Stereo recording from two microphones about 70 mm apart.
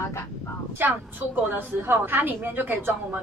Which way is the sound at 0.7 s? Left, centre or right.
Right.